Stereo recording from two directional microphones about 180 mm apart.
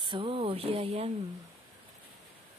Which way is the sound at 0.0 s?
25° right (ahead or behind).